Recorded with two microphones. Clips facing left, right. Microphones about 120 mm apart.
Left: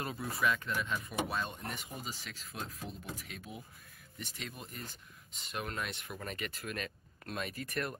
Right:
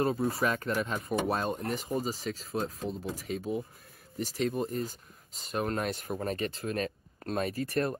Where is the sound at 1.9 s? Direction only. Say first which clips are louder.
Right 13 dB; 35° right (ahead or behind).